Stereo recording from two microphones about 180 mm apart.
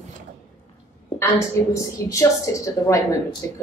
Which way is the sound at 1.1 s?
15° left (ahead or behind).